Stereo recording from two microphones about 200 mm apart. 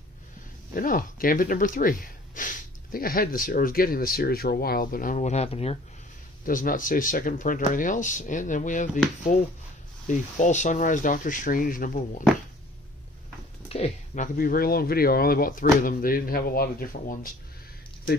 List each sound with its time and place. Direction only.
0.7 s speech: 45° left (ahead or behind)
6.4 s speech: 45° left (ahead or behind)
13.7 s speech: 30° left (ahead or behind)